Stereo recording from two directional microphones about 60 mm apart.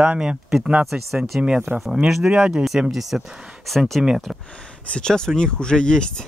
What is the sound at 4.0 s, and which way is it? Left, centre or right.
Speech, centre.